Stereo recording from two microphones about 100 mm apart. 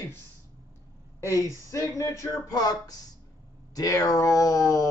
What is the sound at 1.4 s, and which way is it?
Speech, 30° left (ahead or behind).